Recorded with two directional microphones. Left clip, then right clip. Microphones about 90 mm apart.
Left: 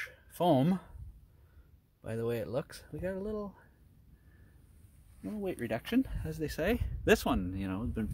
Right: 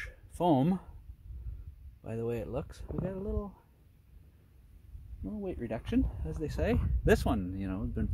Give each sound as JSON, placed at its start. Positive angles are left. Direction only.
{"t": 0.0, "sound": "a sound", "side_deg": -30}
{"t": 2.0, "sound": "speech", "side_deg": -15}
{"t": 2.6, "sound": "speech", "side_deg": -5}
{"t": 5.4, "sound": "speech", "side_deg": 10}
{"t": 7.1, "sound": "speech", "side_deg": -20}